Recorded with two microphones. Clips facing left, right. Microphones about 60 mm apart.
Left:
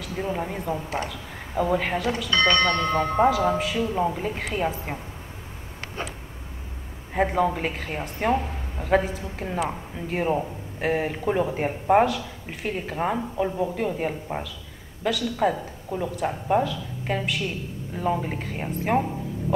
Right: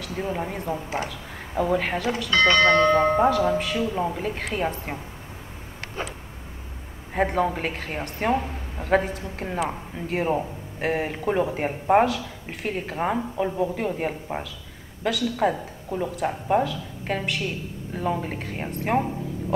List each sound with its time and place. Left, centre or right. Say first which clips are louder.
0.0 s speech: even; centre
7.2 s speech: left 1 dB; centre